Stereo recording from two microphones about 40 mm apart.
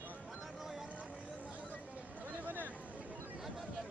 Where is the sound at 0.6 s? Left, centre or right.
Centre.